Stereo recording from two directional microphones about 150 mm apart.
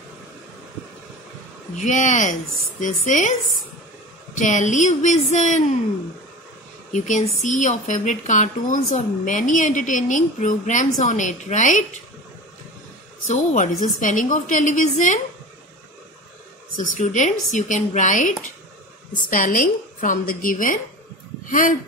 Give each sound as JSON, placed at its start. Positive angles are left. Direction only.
{"t": 1.8, "sound": "speech", "side_deg": 55}
{"t": 4.4, "sound": "speech", "side_deg": 55}
{"t": 6.9, "sound": "speech", "side_deg": 55}
{"t": 13.3, "sound": "speech", "side_deg": 55}
{"t": 16.7, "sound": "speech", "side_deg": 55}
{"t": 19.3, "sound": "speech", "side_deg": 65}